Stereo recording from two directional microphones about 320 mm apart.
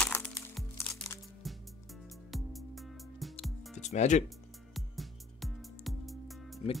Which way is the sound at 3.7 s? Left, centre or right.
Left.